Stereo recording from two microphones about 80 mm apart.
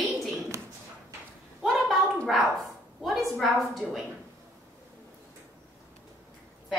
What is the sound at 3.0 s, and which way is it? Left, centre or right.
Speech, centre.